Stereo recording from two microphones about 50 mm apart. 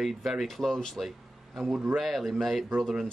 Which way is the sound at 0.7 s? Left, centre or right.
Centre.